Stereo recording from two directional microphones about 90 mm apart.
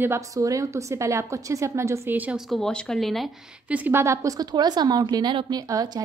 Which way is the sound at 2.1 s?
20° right (ahead or behind).